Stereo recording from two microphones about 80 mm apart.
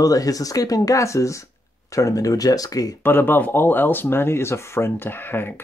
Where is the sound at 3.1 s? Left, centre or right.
Left.